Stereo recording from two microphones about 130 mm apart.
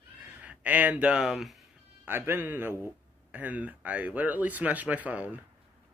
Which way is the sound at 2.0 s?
15° right (ahead or behind).